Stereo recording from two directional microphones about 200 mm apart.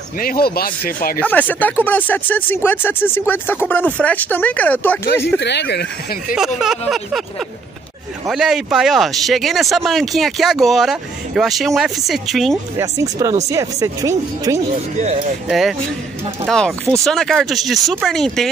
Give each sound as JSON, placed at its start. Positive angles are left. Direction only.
{"t": 0.2, "sound": "speech", "side_deg": 45}
{"t": 1.2, "sound": "speech", "side_deg": 5}
{"t": 5.4, "sound": "speech", "side_deg": 60}
{"t": 6.3, "sound": "speech", "side_deg": 0}
{"t": 8.3, "sound": "speech", "side_deg": 0}
{"t": 12.7, "sound": "speech", "side_deg": -15}
{"t": 14.7, "sound": "speech", "side_deg": -35}
{"t": 15.4, "sound": "speech", "side_deg": 0}